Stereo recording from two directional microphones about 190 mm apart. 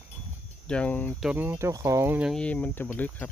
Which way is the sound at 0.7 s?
5° left (ahead or behind).